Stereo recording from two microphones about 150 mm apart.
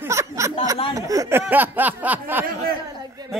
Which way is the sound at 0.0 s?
20° right (ahead or behind).